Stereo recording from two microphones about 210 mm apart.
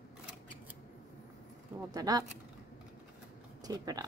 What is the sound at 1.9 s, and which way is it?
Speech, 15° right (ahead or behind).